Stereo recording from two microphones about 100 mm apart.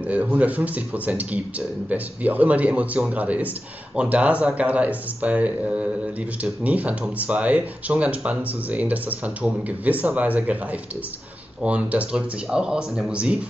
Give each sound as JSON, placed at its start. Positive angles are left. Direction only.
{"t": 0.1, "sound": "speech", "side_deg": -15}